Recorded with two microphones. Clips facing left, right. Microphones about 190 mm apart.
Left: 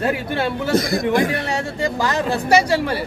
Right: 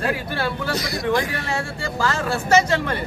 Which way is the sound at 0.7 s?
50° left (ahead or behind).